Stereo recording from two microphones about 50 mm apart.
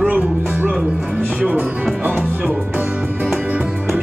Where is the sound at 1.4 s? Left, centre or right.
Right.